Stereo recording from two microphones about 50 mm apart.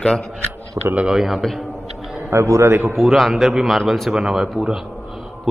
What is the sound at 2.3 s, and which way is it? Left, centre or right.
Speech, right.